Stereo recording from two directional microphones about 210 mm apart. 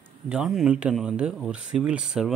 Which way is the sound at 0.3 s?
Centre (ahead or behind).